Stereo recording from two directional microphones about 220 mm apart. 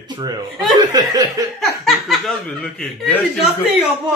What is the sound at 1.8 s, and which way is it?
Speech, centre (ahead or behind).